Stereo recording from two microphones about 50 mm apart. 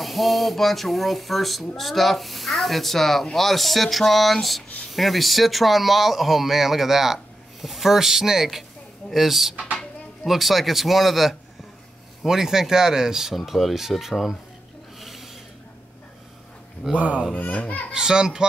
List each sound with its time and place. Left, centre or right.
0.0 s speech: centre
15.0 s a sound: centre
16.9 s speech: right
17.4 s speech: left
17.9 s speech: centre